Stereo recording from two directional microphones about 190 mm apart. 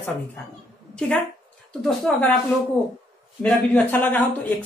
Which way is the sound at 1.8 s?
5° left (ahead or behind).